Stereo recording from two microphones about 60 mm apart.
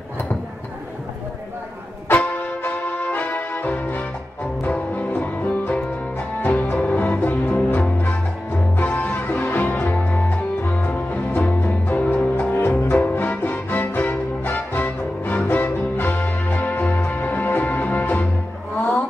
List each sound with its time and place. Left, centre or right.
2.0 s music: left
12.5 s music: left